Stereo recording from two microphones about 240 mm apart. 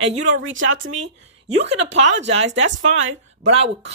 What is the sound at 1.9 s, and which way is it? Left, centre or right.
Speech, right.